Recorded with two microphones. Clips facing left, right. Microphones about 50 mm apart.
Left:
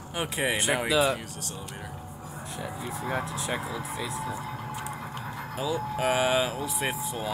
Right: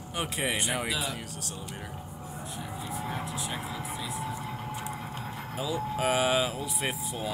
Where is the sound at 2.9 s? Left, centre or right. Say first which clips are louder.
Left 3 dB; left.